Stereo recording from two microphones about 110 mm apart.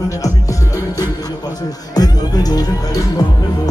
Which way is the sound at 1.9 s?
35° left (ahead or behind).